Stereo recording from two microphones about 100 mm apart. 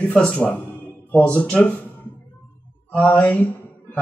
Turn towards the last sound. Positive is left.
turn(degrees=15)  # may be behind; listen again after turning